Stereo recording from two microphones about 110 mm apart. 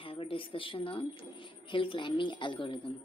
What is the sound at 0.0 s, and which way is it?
A woman's voice, 55° left (ahead or behind).